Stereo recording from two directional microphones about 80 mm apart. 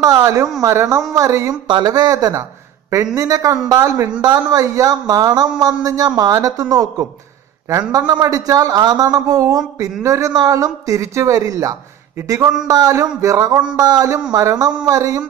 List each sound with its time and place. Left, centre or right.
0.0 s speech: right
1.7 s speech: right
4.2 s speech: right
8.1 s speech: right
13.7 s speech: right